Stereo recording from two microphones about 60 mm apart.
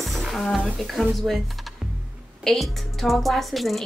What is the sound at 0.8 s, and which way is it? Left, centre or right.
Speech, centre.